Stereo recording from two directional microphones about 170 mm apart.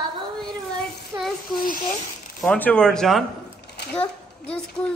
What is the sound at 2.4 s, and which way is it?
A child's voice, 5° left (ahead or behind).